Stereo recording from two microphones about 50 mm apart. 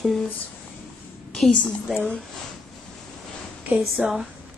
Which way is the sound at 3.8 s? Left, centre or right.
Centre.